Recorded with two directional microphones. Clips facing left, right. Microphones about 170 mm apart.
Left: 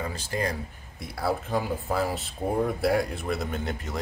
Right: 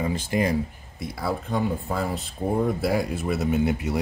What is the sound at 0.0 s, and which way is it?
Speech, 20° right (ahead or behind).